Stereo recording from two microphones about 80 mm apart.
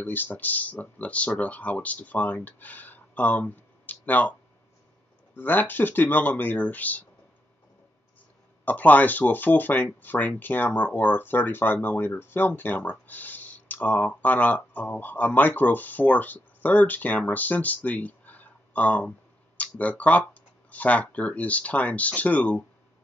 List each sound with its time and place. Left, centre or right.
0.0 s speech: left
8.6 s speech: left